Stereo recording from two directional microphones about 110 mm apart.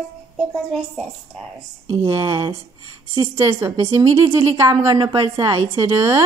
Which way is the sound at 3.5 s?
35° right (ahead or behind).